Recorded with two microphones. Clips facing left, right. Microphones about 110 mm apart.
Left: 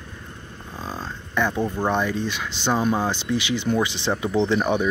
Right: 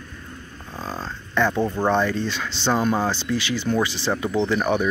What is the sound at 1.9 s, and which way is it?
Speech, 15° left (ahead or behind).